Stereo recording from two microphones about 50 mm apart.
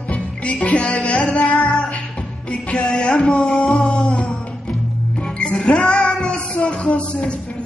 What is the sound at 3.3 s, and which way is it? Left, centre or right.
Music, centre.